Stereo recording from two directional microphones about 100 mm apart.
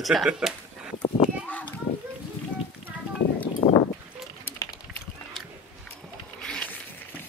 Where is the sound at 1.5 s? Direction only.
15° left (ahead or behind).